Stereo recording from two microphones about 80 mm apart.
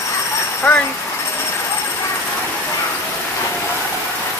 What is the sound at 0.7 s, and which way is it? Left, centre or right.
Speech, centre.